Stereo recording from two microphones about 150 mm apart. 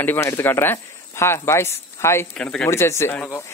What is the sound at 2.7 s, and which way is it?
Speech, 20° left (ahead or behind).